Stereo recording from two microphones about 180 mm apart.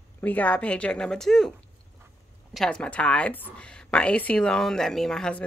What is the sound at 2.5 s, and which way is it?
Speech, 5° left (ahead or behind).